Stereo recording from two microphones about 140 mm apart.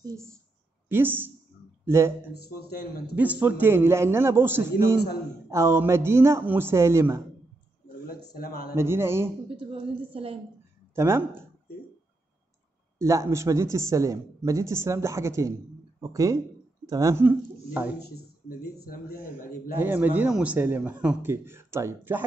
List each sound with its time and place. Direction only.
0.8 s a man's voice: 15° right (ahead or behind)
8.4 s a man's voice: 90° left
8.7 s a man's voice: 15° right (ahead or behind)
9.7 s a woman's voice: 45° right (ahead or behind)
11.0 s a man's voice: 20° right (ahead or behind)
13.0 s a man's voice: 20° right (ahead or behind)
18.9 s a man's voice: 90° left
19.8 s a man's voice: 15° right (ahead or behind)